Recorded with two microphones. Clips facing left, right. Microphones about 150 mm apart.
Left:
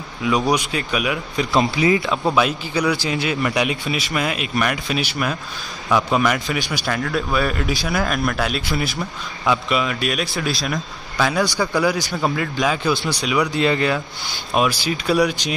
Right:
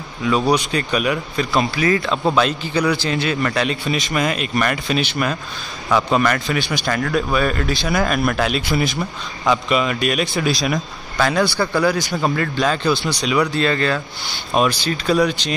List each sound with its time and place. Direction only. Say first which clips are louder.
0.2 s a man's voice: right 2 dB; 10° left (ahead or behind)
1.4 s a man's voice: left 2 dB; 20° left (ahead or behind)
8.0 s a man's voice: right 4 dB; centre (ahead or behind)